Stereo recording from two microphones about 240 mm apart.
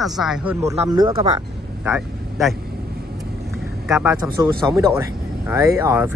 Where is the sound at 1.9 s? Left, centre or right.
Centre.